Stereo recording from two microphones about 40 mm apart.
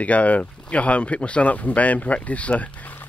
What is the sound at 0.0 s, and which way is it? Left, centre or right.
Speech, left.